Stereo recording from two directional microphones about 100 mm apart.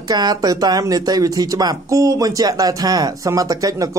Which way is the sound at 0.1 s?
45° right (ahead or behind).